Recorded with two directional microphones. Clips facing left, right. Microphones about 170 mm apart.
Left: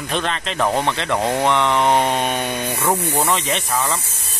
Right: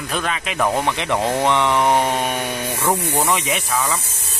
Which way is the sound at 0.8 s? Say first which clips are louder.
Even; 15° right (ahead or behind).